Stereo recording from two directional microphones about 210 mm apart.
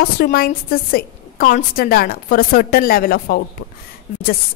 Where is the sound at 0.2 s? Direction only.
45° left (ahead or behind).